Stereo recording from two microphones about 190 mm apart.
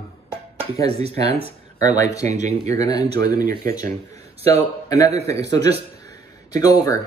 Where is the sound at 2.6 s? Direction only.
20° left (ahead or behind).